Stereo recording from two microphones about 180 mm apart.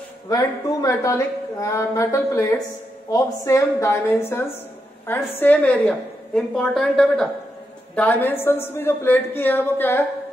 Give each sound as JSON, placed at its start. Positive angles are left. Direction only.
{"t": 0.3, "sound": "a woman's voice", "side_deg": 20}